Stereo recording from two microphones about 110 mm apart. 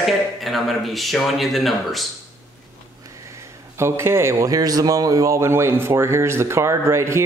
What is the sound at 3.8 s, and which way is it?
A man's voice, 25° right (ahead or behind).